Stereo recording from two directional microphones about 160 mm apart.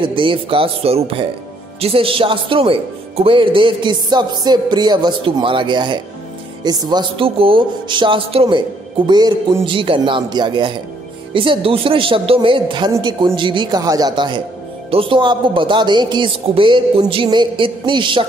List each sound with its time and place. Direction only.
0.1 s speech: 30° right (ahead or behind)